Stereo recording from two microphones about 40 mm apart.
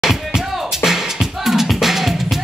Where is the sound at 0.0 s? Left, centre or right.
Centre.